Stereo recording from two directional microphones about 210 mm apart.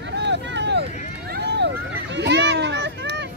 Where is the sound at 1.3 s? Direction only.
55° right (ahead or behind).